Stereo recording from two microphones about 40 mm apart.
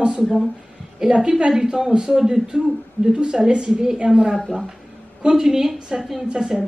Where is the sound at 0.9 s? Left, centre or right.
Right.